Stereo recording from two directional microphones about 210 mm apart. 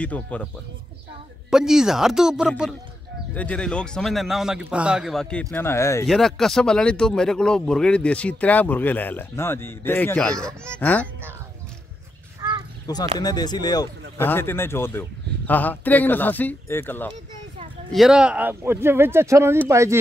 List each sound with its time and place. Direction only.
0.0 s speech: 5° left (ahead or behind)
1.5 s speech: 5° right (ahead or behind); by 6.0 s 15° left (ahead or behind)
6.0 s a man's voice: centre (ahead or behind)
12.4 s crow: 15° right (ahead or behind)
12.8 s a man's voice: 15° left (ahead or behind)
17.9 s speech: 5° right (ahead or behind)